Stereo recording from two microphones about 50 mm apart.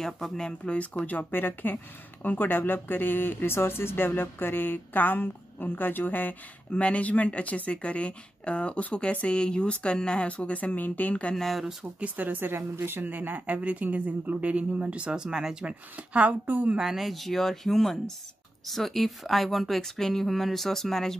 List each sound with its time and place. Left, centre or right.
0.0 s speech: centre
0.7 s speech: left
6.7 s speech: left
11.3 s speech: centre
11.8 s a woman's voice: right; by 15.7 s centre
16.0 s a woman's voice: right
16.8 s speech: centre